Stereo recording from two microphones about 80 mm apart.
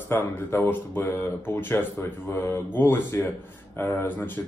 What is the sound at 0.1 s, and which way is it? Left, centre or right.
Speech, left.